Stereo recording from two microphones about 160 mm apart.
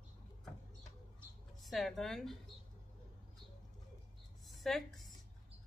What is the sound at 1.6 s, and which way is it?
Speech, centre (ahead or behind).